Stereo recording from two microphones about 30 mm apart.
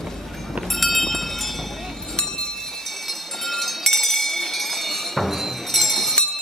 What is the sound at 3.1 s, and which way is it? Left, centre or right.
Run, centre.